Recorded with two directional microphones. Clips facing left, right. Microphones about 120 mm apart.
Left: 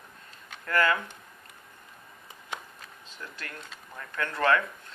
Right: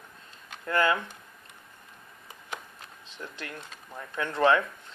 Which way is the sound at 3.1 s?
20° right (ahead or behind).